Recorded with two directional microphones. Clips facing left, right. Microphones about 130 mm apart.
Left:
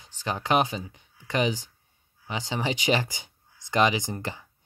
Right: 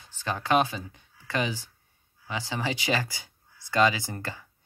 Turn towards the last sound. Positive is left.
turn(degrees=20)  # may be behind; listen again after turning